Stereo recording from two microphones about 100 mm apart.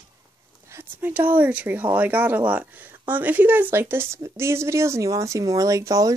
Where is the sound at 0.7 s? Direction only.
25° right (ahead or behind).